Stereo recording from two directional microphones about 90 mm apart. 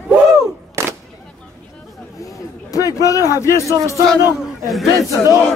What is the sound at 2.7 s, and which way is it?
A man's voice, 40° left (ahead or behind).